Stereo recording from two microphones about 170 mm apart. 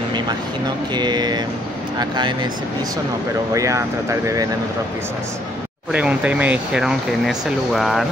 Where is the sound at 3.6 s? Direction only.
15° right (ahead or behind).